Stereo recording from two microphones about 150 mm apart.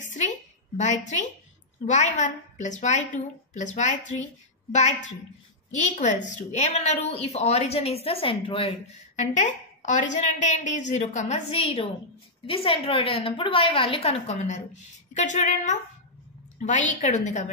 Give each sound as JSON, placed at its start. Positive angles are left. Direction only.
{"t": 0.0, "sound": "a sound", "side_deg": 55}
{"t": 0.7, "sound": "a woman's voice", "side_deg": 55}
{"t": 5.7, "sound": "a woman's voice", "side_deg": 55}
{"t": 9.1, "sound": "a woman's voice", "side_deg": 55}